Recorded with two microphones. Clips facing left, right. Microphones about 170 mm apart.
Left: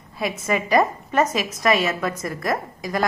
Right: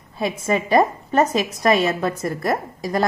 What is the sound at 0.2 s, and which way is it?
A woman's voice, 30° right (ahead or behind).